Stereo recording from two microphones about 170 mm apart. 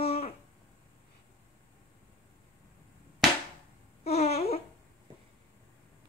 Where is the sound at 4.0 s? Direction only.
40° left (ahead or behind).